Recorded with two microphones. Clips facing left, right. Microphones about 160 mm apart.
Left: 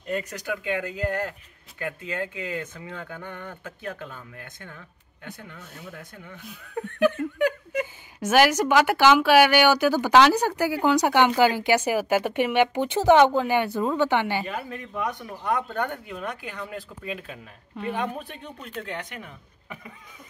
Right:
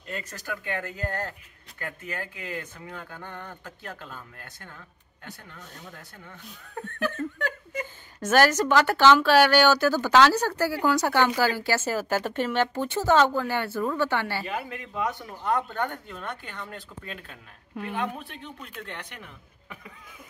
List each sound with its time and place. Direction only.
0.3 s a woman's voice: 15° left (ahead or behind)
7.2 s a woman's voice: 15° left (ahead or behind)
14.5 s a man's voice: 20° right (ahead or behind)
15.0 s a woman's voice: 15° left (ahead or behind)